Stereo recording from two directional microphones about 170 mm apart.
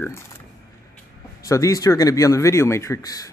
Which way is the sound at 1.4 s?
20° left (ahead or behind).